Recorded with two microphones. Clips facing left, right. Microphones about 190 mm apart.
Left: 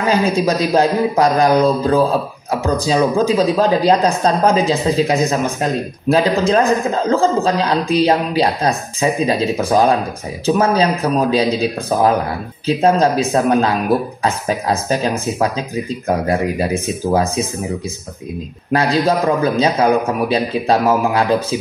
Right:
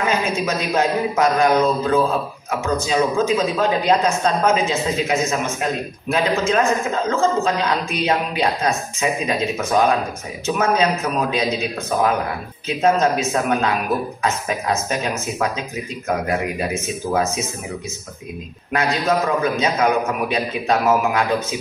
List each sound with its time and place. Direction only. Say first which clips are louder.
0.0 s a man's voice: left 5 dB; 35° left (ahead or behind)
18.7 s a man's voice: left 4 dB; 35° left (ahead or behind)